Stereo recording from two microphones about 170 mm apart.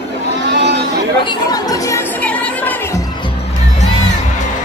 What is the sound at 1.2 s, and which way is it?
Music, 20° left (ahead or behind).